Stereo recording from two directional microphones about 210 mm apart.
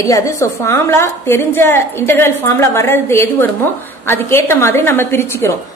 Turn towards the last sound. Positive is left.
turn(degrees=10)  # may be behind; listen again after turning